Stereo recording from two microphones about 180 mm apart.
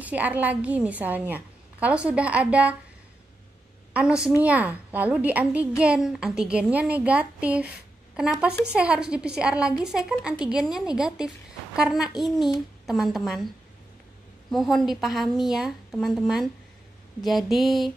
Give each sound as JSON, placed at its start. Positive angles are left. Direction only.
{"t": 0.0, "sound": "a woman's voice", "side_deg": -10}
{"t": 3.9, "sound": "a woman's voice", "side_deg": -5}
{"t": 14.5, "sound": "a woman's voice", "side_deg": 0}